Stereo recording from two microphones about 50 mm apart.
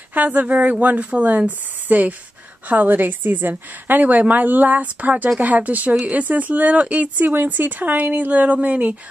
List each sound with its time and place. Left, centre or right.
0.1 s speech: right